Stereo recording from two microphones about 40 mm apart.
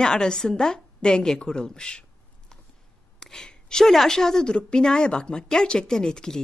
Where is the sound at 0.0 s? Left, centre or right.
Centre.